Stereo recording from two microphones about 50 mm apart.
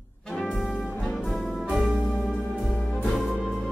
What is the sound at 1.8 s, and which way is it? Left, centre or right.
Music, right.